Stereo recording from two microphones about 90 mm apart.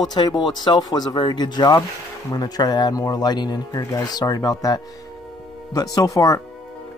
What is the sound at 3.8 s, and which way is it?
Speech, 35° left (ahead or behind).